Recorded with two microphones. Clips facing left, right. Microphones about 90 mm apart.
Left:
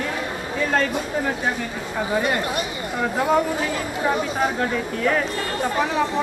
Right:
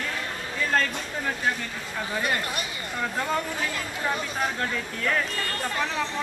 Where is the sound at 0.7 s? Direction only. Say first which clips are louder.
Left 4 dB; 10° left (ahead or behind).